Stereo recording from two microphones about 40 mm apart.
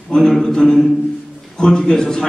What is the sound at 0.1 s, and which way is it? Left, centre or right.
A man's voice, centre.